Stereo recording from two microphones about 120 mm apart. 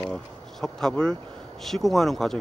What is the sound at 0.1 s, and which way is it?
Speech, 5° left (ahead or behind).